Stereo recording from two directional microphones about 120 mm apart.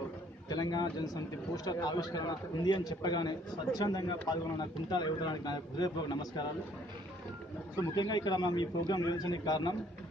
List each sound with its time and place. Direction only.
0.5 s a man's voice: 35° left (ahead or behind)
7.9 s a man's voice: 35° left (ahead or behind)